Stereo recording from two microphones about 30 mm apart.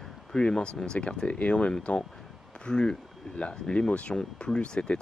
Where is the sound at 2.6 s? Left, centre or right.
Left.